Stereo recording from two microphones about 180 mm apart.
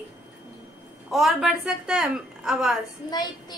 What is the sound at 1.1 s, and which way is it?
A woman's voice, centre (ahead or behind).